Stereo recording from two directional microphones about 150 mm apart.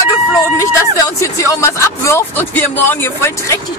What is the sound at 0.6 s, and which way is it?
Speech, 20° left (ahead or behind).